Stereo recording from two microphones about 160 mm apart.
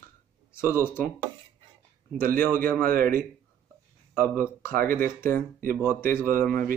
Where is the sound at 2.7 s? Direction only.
15° left (ahead or behind).